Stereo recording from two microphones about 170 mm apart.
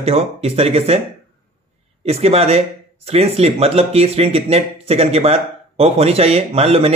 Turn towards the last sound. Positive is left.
turn(degrees=-35)  # may be behind; listen again after turning